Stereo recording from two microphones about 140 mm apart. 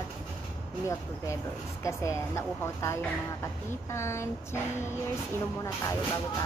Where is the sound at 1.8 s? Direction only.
20° left (ahead or behind).